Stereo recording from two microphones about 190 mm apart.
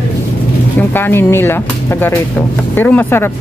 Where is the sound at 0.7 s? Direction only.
10° left (ahead or behind).